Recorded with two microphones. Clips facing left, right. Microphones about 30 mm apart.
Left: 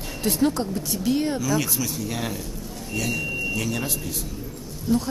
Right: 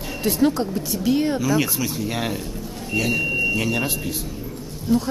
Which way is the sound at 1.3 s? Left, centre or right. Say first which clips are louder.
Right 3 dB; right.